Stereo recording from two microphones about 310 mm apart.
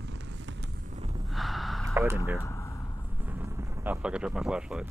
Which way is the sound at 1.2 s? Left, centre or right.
Centre.